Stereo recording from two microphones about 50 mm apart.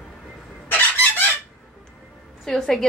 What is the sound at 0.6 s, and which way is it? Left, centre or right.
Chicken, left.